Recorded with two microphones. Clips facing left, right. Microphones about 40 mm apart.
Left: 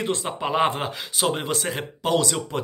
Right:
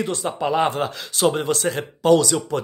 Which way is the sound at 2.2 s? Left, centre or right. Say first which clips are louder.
Right 3 dB; left.